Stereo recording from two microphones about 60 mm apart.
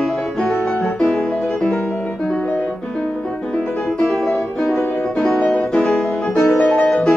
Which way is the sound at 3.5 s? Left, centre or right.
Centre.